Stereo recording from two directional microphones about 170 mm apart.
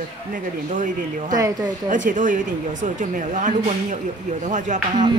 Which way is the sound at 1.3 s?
20° right (ahead or behind).